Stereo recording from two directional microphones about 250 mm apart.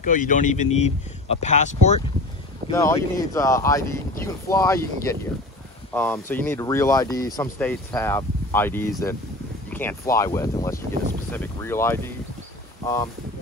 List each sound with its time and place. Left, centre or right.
0.0 s speech: left
2.7 s speech: centre